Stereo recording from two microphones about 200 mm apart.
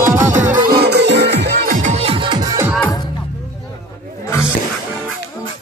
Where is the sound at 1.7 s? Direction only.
35° right (ahead or behind).